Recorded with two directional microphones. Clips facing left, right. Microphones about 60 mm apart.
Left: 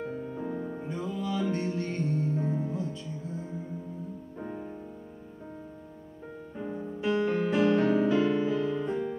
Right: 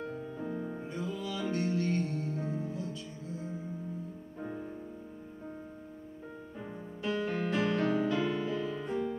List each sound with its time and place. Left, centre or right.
0.0 s music: left
0.8 s music: left
6.6 s music: centre
8.5 s music: centre
8.8 s music: left